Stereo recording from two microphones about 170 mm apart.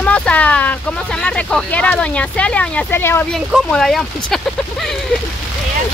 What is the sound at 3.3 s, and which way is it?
Speech, centre (ahead or behind).